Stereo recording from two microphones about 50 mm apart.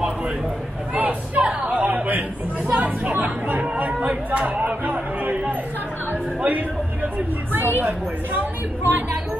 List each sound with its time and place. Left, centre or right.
0.9 s chatter: right
4.0 s a sound: right
7.5 s a woman's voice: right